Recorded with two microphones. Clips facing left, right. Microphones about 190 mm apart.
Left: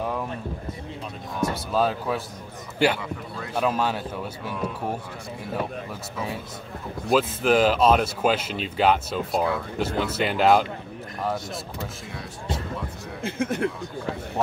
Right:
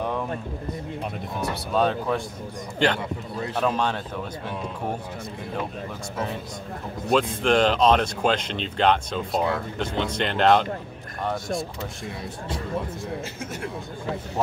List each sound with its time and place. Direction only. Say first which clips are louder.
1.7 s speech: right 3 dB; 5° left (ahead or behind)
7.1 s speech: even; 5° left (ahead or behind)
13.2 s a man's voice: left 7 dB; 55° left (ahead or behind)